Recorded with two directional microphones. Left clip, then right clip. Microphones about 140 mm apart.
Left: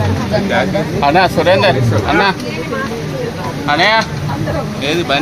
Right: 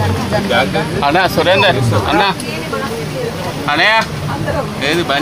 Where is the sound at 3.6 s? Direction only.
Centre (ahead or behind).